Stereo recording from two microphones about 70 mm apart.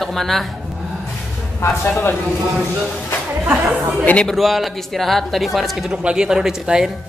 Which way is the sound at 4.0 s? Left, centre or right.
Centre.